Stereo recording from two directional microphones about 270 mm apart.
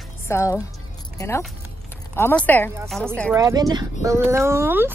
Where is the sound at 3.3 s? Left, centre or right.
Centre.